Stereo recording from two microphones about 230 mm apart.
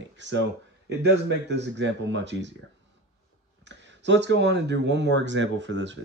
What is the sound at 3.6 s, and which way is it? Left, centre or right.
Speech, right.